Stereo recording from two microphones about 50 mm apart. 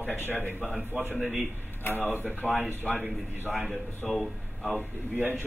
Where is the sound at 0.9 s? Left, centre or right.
Right.